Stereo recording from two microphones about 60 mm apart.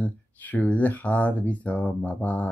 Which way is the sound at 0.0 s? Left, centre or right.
Left.